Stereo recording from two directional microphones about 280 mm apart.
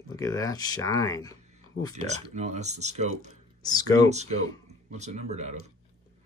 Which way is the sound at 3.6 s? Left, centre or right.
Centre.